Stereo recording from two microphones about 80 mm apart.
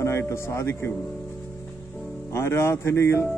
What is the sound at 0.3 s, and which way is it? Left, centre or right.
Speech, left.